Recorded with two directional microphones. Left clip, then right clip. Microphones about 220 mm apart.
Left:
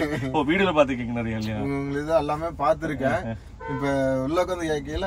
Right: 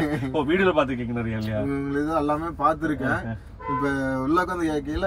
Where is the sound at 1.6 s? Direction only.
5° left (ahead or behind).